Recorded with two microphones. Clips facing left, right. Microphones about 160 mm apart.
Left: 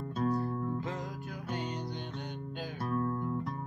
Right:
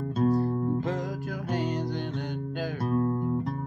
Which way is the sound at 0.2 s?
35° right (ahead or behind).